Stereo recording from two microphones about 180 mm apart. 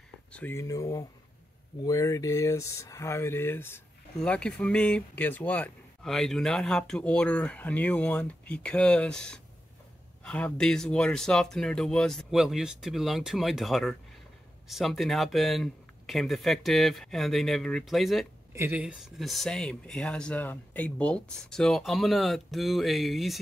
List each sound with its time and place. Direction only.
0.3 s speech: 10° left (ahead or behind)
18.5 s speech: 10° right (ahead or behind)